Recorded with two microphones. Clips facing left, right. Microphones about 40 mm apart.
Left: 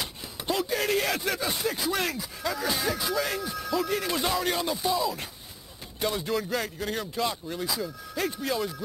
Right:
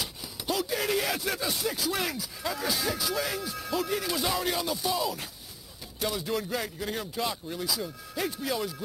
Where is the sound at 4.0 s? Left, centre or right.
Centre.